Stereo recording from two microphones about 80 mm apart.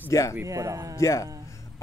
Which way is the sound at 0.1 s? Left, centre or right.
Left.